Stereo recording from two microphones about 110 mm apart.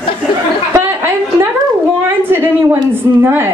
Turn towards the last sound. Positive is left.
turn(degrees=-20)  # may be behind; listen again after turning